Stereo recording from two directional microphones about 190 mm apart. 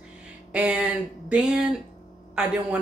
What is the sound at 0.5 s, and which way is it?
Speech, 5° right (ahead or behind).